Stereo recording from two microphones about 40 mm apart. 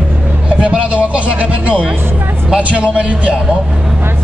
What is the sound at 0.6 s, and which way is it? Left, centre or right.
Speech, right.